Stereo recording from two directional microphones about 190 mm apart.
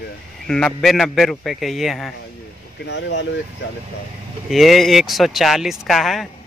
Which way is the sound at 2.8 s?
70° left (ahead or behind).